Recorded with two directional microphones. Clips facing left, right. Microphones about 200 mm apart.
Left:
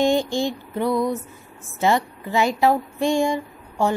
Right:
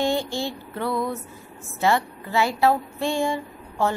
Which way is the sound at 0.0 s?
15° left (ahead or behind).